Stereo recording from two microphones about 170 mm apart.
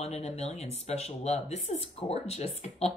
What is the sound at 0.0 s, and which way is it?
Speech, 40° left (ahead or behind).